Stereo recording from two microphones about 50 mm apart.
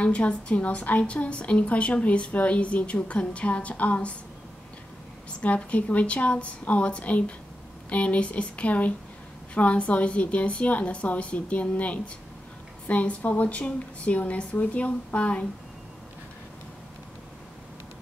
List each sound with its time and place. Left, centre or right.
0.0 s a woman's voice: left
5.4 s a woman's voice: left